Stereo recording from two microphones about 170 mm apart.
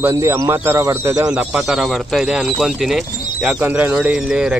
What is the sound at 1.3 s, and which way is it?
Speech, 5° right (ahead or behind).